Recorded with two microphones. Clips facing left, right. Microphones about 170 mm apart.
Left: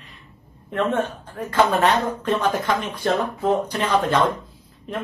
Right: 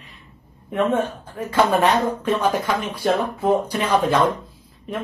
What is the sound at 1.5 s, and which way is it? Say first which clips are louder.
A woman's voice: right 1 dB; 10° right (ahead or behind).